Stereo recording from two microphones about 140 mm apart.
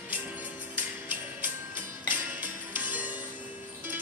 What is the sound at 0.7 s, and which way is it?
Music, 10° right (ahead or behind).